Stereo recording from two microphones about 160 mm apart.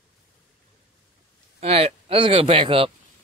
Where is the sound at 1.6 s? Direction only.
40° right (ahead or behind).